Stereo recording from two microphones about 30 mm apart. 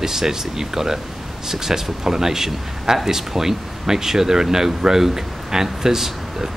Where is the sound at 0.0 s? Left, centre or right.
Centre.